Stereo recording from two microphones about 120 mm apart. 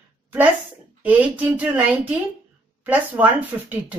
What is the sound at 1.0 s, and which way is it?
Speech, 15° right (ahead or behind).